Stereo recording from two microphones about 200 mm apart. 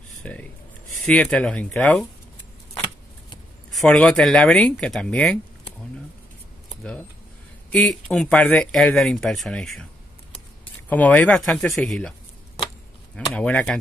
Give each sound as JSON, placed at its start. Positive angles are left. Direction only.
{"t": 0.2, "sound": "speech", "side_deg": 5}
{"t": 3.7, "sound": "speech", "side_deg": 5}
{"t": 6.8, "sound": "speech", "side_deg": 5}
{"t": 10.9, "sound": "speech", "side_deg": 10}
{"t": 13.1, "sound": "speech", "side_deg": 5}